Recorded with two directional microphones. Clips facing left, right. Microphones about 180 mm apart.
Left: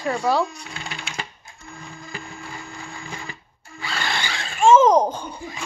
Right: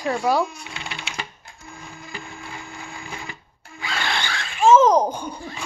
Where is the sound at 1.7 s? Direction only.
5° right (ahead or behind).